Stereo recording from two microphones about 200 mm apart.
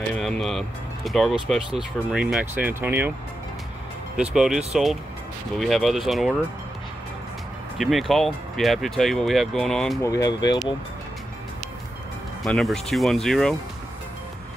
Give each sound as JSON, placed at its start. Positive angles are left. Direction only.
{"t": 0.1, "sound": "speech", "side_deg": 5}
{"t": 4.2, "sound": "speech", "side_deg": -5}
{"t": 7.7, "sound": "speech", "side_deg": 0}
{"t": 10.0, "sound": "speech", "side_deg": 15}
{"t": 12.4, "sound": "speech", "side_deg": 0}